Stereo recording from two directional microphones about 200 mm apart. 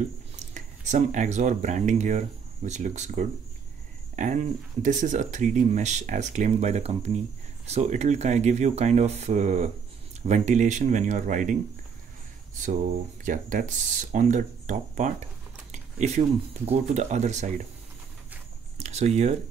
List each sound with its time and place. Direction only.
0.4 s speech: 35° right (ahead or behind)
4.8 s speech: 40° right (ahead or behind)
12.6 s speech: 40° right (ahead or behind)
18.8 s speech: 35° right (ahead or behind)